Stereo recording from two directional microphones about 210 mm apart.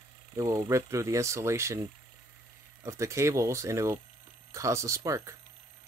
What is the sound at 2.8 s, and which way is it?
Speech, 15° right (ahead or behind).